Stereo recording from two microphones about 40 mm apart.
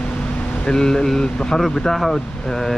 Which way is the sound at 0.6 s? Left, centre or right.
Centre.